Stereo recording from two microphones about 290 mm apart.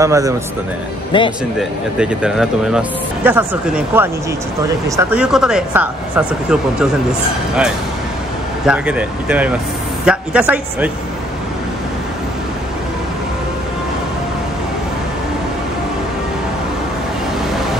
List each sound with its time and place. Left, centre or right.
0.0 s speech: centre
1.1 s a man's voice: centre
1.6 s speech: centre
8.6 s speech: centre